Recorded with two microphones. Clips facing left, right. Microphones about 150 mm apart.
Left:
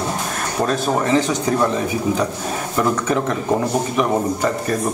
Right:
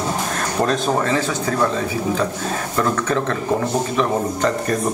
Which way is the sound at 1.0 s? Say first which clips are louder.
Left 3 dB; 20° left (ahead or behind).